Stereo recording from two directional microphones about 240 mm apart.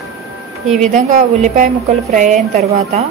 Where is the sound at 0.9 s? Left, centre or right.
Right.